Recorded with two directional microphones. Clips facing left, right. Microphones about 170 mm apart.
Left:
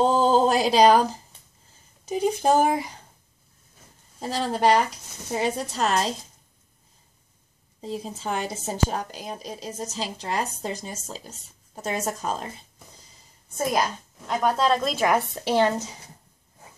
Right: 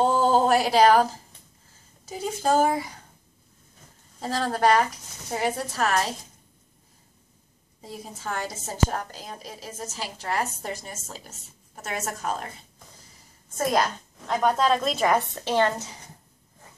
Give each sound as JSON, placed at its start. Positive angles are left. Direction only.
{"t": 0.0, "sound": "a sound", "side_deg": 20}
{"t": 2.0, "sound": "speech", "side_deg": 15}
{"t": 4.2, "sound": "a woman's voice", "side_deg": 15}
{"t": 7.8, "sound": "a woman's voice", "side_deg": 20}
{"t": 14.2, "sound": "speech", "side_deg": 0}